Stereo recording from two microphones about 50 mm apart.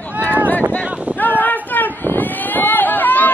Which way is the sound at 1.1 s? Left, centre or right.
Left.